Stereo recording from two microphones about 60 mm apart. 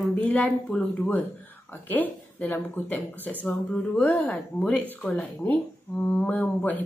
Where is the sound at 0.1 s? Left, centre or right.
Left.